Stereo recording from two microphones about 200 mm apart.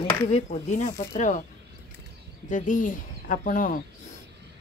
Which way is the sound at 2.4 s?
40° left (ahead or behind).